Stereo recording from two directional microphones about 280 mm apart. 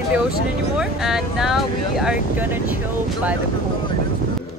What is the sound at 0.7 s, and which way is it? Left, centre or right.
Speech, centre.